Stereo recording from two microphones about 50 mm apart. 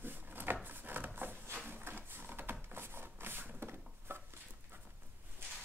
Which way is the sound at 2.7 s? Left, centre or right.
Right.